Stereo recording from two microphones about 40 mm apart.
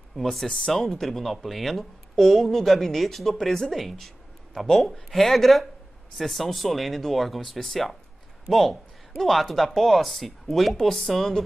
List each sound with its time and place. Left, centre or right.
0.1 s speech: centre
0.5 s speech: centre
0.8 s speech: centre